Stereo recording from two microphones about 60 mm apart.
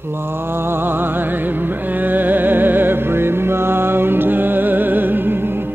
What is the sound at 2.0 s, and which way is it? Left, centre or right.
Music, right.